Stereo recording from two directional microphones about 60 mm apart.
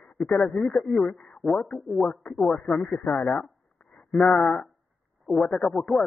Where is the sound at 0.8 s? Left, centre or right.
Centre.